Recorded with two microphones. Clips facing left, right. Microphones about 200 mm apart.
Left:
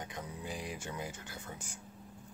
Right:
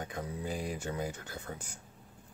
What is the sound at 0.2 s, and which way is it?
Speech, 45° right (ahead or behind).